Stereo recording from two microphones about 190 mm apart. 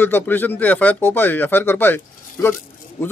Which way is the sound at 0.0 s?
10° left (ahead or behind).